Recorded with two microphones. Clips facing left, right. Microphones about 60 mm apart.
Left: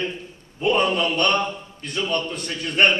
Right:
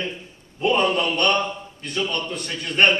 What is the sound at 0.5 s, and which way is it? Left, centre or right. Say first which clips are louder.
Speech: even; centre.